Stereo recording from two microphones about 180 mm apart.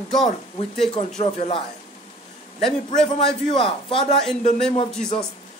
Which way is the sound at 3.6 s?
30° left (ahead or behind).